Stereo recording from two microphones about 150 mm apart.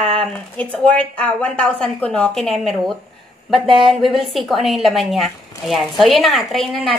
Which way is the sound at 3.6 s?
35° right (ahead or behind).